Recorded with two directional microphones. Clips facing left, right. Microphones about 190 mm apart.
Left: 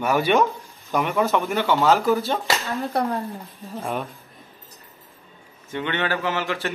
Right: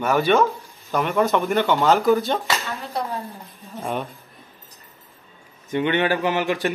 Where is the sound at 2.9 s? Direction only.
55° left (ahead or behind).